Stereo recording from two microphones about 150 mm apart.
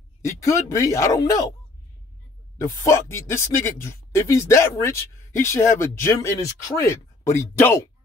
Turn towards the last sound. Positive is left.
turn(degrees=15)  # may be behind; listen again after turning